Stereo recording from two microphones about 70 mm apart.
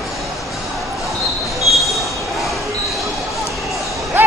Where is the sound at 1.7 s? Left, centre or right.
Centre.